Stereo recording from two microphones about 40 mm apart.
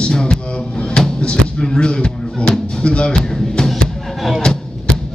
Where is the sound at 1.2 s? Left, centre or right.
Left.